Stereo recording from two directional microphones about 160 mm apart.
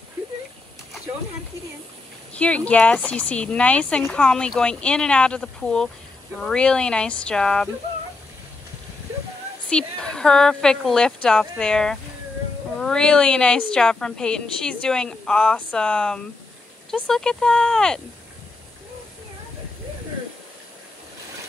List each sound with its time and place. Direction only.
2.3 s a woman's voice: 10° left (ahead or behind)
9.7 s a woman's voice: 5° left (ahead or behind)